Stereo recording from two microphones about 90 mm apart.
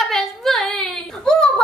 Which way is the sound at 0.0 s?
5° left (ahead or behind).